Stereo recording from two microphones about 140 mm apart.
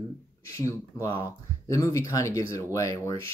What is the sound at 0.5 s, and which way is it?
Speech, 20° left (ahead or behind).